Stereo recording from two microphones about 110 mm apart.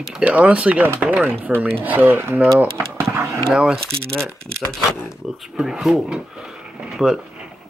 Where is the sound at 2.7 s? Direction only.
25° right (ahead or behind).